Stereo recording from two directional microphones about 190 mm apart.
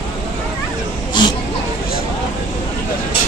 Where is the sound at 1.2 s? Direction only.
25° left (ahead or behind).